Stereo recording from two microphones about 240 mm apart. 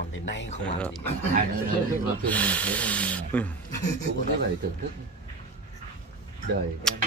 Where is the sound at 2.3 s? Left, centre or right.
Centre.